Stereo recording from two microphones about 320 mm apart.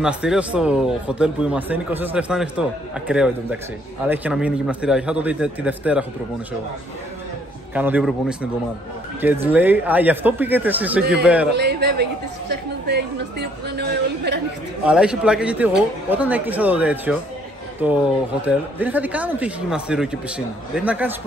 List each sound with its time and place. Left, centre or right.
0.0 s speech: centre
7.7 s speech: centre
9.5 s speech: centre
11.5 s a woman's voice: right
14.9 s speech: centre